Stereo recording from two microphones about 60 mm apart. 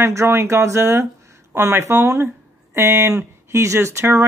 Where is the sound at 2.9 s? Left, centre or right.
Right.